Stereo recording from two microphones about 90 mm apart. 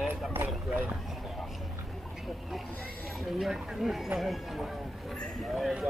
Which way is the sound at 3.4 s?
5° right (ahead or behind).